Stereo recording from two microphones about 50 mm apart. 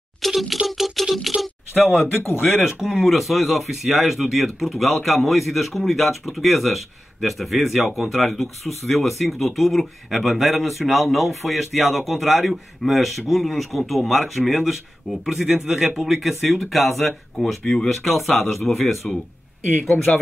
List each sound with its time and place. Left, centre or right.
0.2 s a sound: centre
2.0 s speech: left
2.6 s speech: centre
19.1 s speech: centre